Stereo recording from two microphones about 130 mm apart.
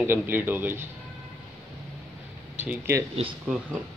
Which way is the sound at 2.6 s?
20° right (ahead or behind).